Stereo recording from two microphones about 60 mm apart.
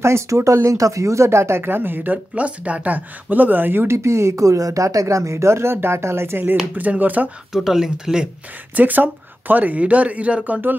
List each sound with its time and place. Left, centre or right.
0.0 s speech: right
6.7 s speech: right
7.5 s speech: centre
8.7 s speech: right